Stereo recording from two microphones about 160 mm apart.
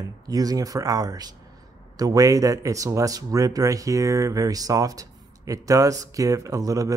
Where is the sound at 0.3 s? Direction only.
25° right (ahead or behind).